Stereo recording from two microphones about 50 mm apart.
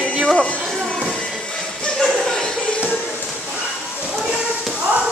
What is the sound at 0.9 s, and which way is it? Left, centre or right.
Music, left.